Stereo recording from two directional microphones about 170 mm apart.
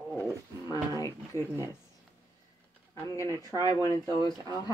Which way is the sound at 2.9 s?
20° left (ahead or behind).